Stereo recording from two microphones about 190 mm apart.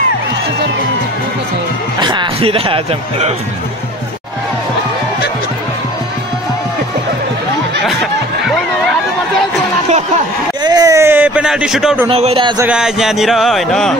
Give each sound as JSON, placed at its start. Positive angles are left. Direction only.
{"t": 2.0, "sound": "speech", "side_deg": -25}
{"t": 10.6, "sound": "a sound", "side_deg": -20}
{"t": 12.1, "sound": "speech", "side_deg": -30}
{"t": 12.6, "sound": "speech", "side_deg": -5}